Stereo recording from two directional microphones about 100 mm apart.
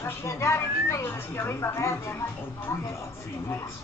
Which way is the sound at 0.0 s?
30° left (ahead or behind).